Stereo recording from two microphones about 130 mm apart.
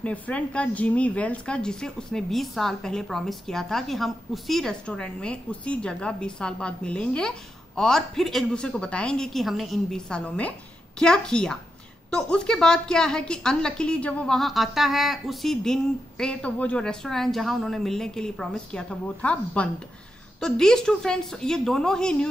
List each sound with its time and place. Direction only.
0.0 s a woman's voice: 10° left (ahead or behind)